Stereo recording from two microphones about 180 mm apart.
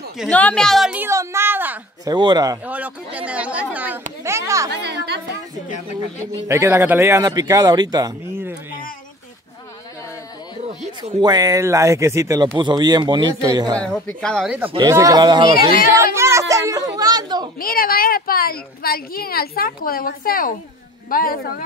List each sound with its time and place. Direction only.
0.3 s speech: 10° left (ahead or behind); by 2.1 s 10° right (ahead or behind)
2.1 s a man's voice: 20° right (ahead or behind)
2.6 s speech: 10° right (ahead or behind)
4.6 s a woman's voice: 65° right (ahead or behind)
6.4 s speech: 15° right (ahead or behind)
11.1 s a man's voice: 20° right (ahead or behind)
13.7 s speech: 5° left (ahead or behind)
14.7 s a man's voice: 20° right (ahead or behind)
15.9 s a sound: 15° right (ahead or behind)
17.6 s a woman's voice: 55° left (ahead or behind)